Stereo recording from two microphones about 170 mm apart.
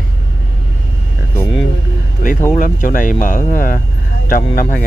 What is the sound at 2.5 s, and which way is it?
Speech, 50° left (ahead or behind).